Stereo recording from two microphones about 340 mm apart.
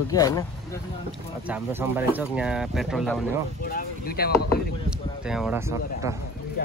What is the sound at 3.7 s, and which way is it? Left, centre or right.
Speech, left.